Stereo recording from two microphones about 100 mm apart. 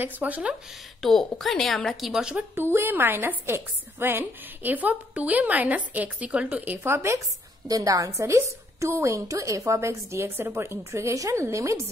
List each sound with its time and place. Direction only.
0.0 s a woman's voice: 15° right (ahead or behind)
1.0 s a woman's voice: centre (ahead or behind)
2.5 s a woman's voice: 25° right (ahead or behind)
7.6 s a woman's voice: 35° right (ahead or behind)